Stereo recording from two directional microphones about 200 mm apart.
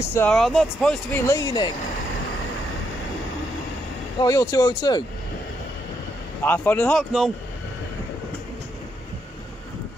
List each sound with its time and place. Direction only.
0.0 s speech: 10° left (ahead or behind)
1.2 s speech: 20° left (ahead or behind)
4.2 s speech: 15° left (ahead or behind)
6.4 s speech: 10° left (ahead or behind)